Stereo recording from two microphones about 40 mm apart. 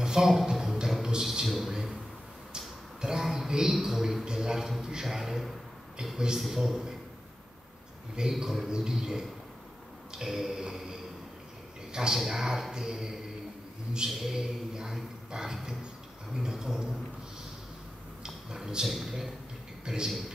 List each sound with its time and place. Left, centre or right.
0.0 s a sound: centre
6.1 s speech: centre
6.4 s speech: centre
8.2 s speech: centre
10.1 s mantra: centre
11.9 s a man's voice: centre
18.2 s a sound: centre
18.9 s a man's voice: centre
19.8 s a man's voice: centre
20.1 s a man's voice: centre